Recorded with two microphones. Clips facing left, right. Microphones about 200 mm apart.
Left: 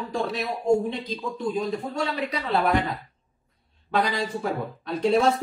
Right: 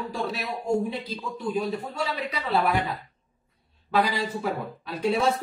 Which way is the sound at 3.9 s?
5° right (ahead or behind).